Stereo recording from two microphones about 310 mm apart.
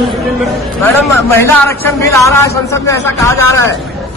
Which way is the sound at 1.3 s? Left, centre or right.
Centre.